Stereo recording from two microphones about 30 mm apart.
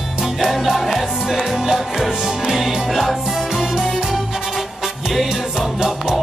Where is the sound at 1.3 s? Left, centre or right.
Centre.